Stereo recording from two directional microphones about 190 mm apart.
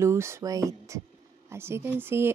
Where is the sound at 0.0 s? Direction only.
15° right (ahead or behind).